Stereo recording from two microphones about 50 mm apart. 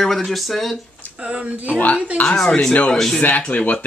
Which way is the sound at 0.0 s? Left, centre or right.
Centre.